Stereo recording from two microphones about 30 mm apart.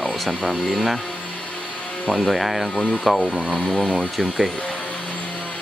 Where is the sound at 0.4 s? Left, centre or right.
Centre.